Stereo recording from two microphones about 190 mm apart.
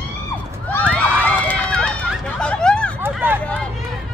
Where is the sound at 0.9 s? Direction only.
10° left (ahead or behind).